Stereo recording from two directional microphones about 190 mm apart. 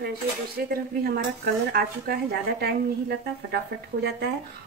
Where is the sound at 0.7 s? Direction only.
55° right (ahead or behind).